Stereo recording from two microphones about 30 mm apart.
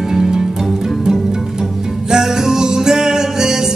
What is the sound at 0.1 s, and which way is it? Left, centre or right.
Music, centre.